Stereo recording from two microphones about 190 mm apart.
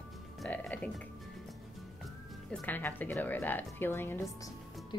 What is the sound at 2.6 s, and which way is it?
A woman's voice, 10° left (ahead or behind).